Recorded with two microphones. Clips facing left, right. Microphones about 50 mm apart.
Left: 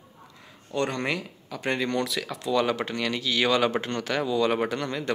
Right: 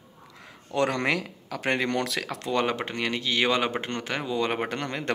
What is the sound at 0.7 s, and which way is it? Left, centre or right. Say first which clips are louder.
Speech: right 2 dB; right.